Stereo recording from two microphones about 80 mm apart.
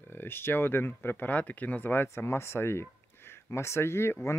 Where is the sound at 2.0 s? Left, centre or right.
Left.